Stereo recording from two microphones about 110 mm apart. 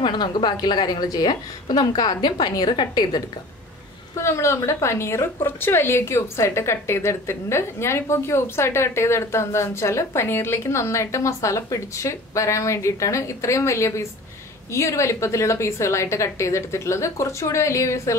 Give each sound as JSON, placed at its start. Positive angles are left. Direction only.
{"t": 0.0, "sound": "a woman's voice", "side_deg": 45}
{"t": 4.1, "sound": "a woman's voice", "side_deg": 25}